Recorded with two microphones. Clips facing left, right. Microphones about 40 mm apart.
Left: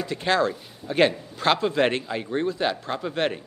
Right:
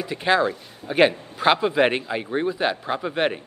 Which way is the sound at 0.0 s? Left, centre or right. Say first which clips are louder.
Right 2 dB; centre.